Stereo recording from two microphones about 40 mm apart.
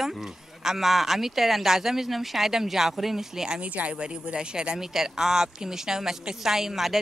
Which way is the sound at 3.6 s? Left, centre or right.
Right.